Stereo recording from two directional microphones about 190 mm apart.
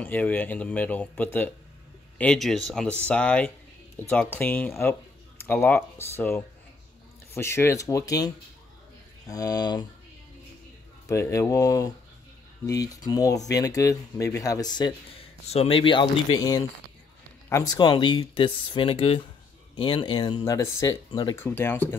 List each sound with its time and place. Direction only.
0.0 s speech: 10° left (ahead or behind)
9.3 s speech: 20° left (ahead or behind)
11.1 s speech: 15° left (ahead or behind)
15.4 s speech: 35° left (ahead or behind); by 21.8 s 10° left (ahead or behind)